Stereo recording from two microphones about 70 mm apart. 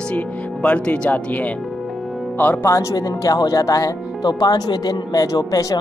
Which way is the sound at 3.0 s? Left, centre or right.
Left.